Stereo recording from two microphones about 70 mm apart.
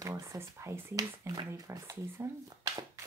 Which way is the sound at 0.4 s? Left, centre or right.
Right.